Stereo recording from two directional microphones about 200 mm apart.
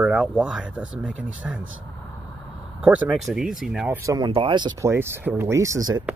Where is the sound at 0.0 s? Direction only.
5° right (ahead or behind).